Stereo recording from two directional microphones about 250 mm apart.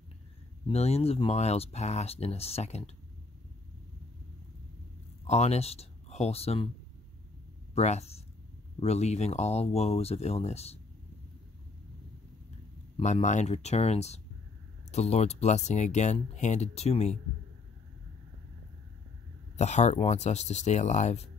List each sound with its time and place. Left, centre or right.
0.7 s speech: left
5.2 s speech: left
7.7 s speech: left
12.9 s speech: left
19.5 s speech: left